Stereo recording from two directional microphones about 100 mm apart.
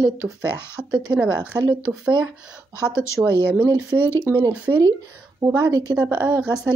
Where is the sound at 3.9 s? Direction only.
20° right (ahead or behind).